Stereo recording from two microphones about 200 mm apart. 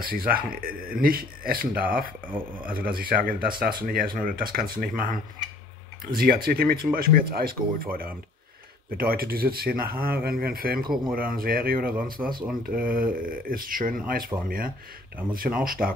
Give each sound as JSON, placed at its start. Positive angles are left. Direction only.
{"t": 0.0, "sound": "speech", "side_deg": -45}
{"t": 15.6, "sound": "speech", "side_deg": -45}